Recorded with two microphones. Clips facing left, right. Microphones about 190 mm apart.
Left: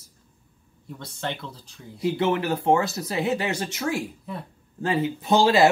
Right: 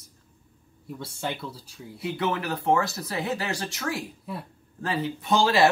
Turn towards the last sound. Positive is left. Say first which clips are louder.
# left 3 dB
turn(degrees=25)  # may be behind; listen again after turning